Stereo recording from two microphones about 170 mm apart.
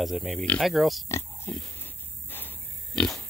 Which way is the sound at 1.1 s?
15° left (ahead or behind).